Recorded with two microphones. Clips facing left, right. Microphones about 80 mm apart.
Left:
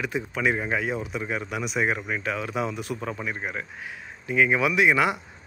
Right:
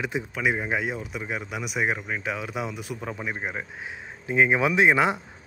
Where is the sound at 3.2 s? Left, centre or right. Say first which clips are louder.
Even; right.